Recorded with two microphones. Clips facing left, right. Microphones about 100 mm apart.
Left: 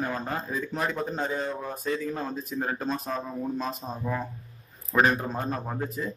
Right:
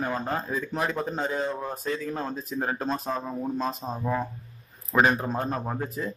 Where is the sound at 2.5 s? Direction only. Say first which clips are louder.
Right 2 dB; 15° right (ahead or behind).